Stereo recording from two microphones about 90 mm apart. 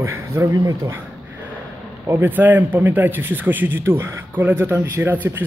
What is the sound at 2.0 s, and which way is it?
A man's voice, 25° right (ahead or behind).